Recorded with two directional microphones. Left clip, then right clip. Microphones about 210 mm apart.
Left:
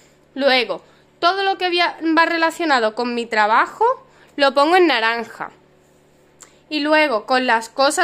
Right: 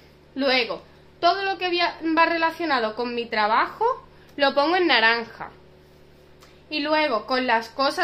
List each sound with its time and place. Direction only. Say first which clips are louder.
0.3 s a woman's voice: left 5 dB; 60° left (ahead or behind)
6.7 s a woman's voice: left 6 dB; 60° left (ahead or behind)